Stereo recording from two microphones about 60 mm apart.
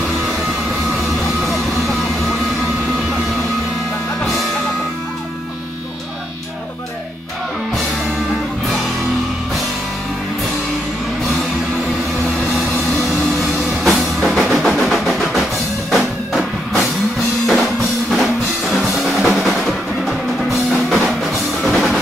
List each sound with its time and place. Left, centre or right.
13.8 s music: centre
14.4 s percussion: centre
15.9 s music: centre
18.1 s music: centre